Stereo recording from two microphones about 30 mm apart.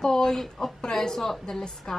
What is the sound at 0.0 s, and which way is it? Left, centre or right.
A woman's voice, centre.